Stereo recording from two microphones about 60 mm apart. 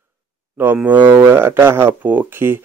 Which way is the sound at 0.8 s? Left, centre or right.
Right.